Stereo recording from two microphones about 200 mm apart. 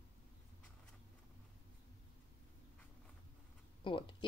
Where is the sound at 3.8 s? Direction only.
25° left (ahead or behind).